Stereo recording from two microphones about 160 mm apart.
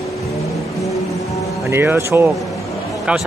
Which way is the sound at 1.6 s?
15° right (ahead or behind).